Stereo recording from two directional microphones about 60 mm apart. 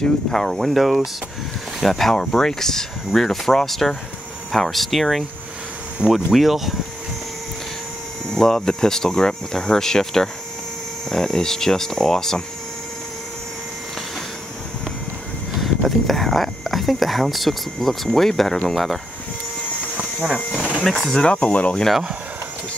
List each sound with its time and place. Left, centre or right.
0.0 s speech: centre
6.0 s speech: centre
6.3 s speech: centre
8.3 s speech: centre
15.5 s speech: centre
20.5 s printer: right
20.8 s speech: centre
21.3 s speech: centre